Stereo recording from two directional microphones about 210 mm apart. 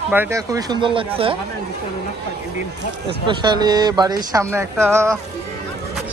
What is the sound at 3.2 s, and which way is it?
Speech, 20° right (ahead or behind).